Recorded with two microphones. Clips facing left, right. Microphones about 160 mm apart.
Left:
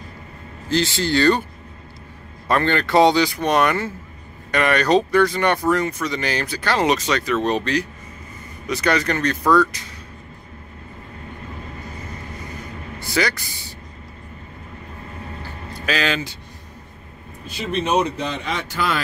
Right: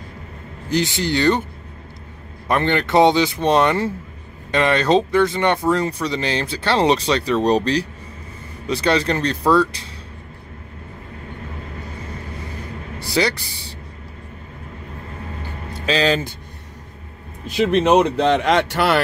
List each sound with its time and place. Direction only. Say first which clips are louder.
0.7 s speech: even; 15° right (ahead or behind)
2.4 s speech: right 1 dB; 20° right (ahead or behind)
13.0 s speech: right 2 dB; 30° right (ahead or behind)
15.8 s speech: right 4 dB; 30° right (ahead or behind)
17.6 s speech: right 6 dB; 85° right